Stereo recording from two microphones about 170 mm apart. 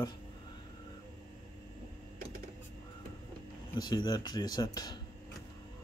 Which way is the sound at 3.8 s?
25° left (ahead or behind).